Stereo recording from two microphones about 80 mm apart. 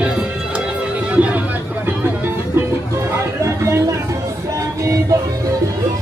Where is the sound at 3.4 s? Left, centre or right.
Right.